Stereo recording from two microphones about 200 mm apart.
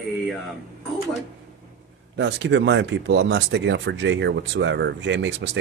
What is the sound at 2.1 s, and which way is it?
Speech, 65° right (ahead or behind).